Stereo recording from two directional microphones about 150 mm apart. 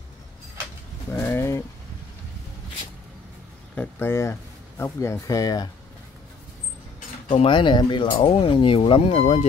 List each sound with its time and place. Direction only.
1.1 s bird: 15° left (ahead or behind)
3.7 s speech: 10° left (ahead or behind)
7.2 s speech: 35° left (ahead or behind)